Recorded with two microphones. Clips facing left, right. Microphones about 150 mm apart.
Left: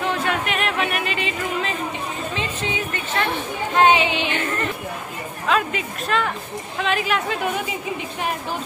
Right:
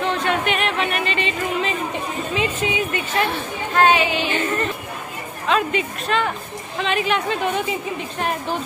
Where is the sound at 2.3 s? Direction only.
10° right (ahead or behind).